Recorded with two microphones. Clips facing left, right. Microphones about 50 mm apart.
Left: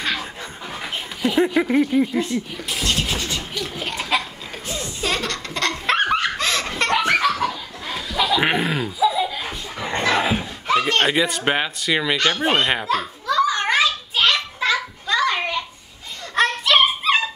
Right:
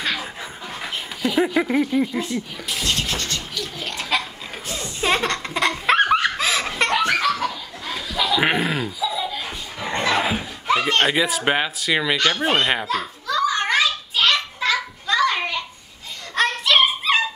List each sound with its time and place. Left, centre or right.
0.0 s dog: centre
0.8 s speech: centre
1.9 s a sound: centre
5.0 s baby laughter: right
5.5 s laughter: centre
7.0 s laughter: centre
9.0 s laughter: centre
9.3 s a sound: centre
10.7 s speech: centre
13.3 s children playing: centre
16.3 s dog: centre